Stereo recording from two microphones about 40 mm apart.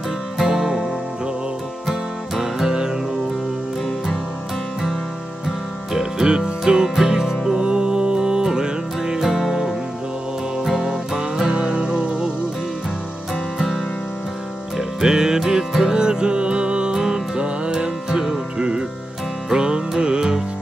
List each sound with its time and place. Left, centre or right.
0.5 s music: centre
1.9 s music: centre
5.9 s music: centre
14.8 s music: centre